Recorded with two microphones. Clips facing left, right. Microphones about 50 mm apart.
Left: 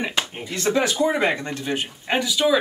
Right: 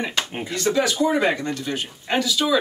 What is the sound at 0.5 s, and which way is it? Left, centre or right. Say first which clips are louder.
Speech: even; left.